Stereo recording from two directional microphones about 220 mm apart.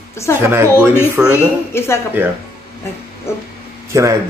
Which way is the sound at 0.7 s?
10° left (ahead or behind).